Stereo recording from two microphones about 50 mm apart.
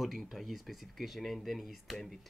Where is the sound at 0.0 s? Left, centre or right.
Centre.